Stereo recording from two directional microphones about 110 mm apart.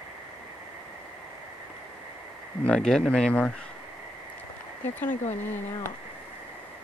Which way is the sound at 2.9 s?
10° left (ahead or behind).